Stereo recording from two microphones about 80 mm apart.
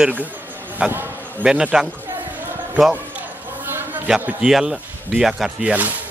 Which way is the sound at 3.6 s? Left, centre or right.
Right.